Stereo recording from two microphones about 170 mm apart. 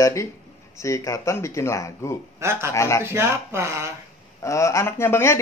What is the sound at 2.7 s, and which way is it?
Speech, 15° left (ahead or behind).